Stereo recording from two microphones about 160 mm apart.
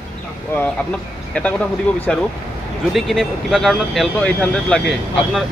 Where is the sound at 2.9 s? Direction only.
Centre (ahead or behind).